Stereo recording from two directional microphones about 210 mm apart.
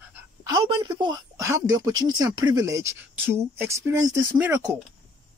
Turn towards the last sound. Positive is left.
turn(degrees=-15)  # may be behind; listen again after turning